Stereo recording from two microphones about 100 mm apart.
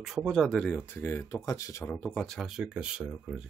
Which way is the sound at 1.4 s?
35° left (ahead or behind).